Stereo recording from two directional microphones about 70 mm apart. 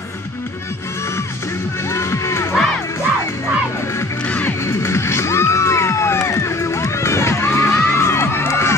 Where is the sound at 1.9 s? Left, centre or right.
Left.